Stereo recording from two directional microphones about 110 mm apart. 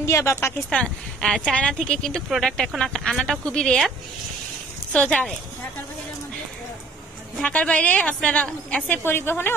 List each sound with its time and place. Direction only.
0.0 s speech: 25° left (ahead or behind)
0.7 s a woman's voice: 10° left (ahead or behind)
2.2 s a woman's voice: 5° right (ahead or behind)
4.9 s a woman's voice: 10° left (ahead or behind)
7.4 s a woman's voice: 10° left (ahead or behind)